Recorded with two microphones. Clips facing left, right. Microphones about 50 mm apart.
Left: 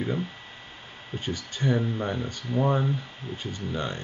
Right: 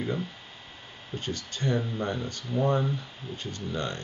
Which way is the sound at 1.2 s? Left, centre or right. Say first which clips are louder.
Left 3 dB; centre.